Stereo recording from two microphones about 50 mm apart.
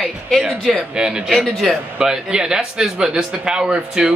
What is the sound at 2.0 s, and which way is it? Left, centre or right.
Speech, centre.